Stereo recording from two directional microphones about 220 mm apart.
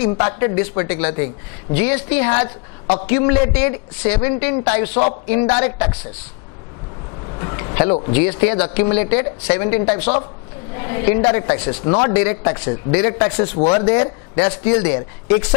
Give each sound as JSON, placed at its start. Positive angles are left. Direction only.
{"t": 0.0, "sound": "a man's voice", "side_deg": 15}
{"t": 4.9, "sound": "speech", "side_deg": 30}
{"t": 7.3, "sound": "a sound", "side_deg": 20}
{"t": 8.1, "sound": "a man's voice", "side_deg": 15}
{"t": 8.5, "sound": "a woman's voice", "side_deg": 30}
{"t": 12.2, "sound": "a man's voice", "side_deg": 15}
{"t": 13.6, "sound": "speech", "side_deg": 30}
{"t": 13.8, "sound": "speech", "side_deg": 20}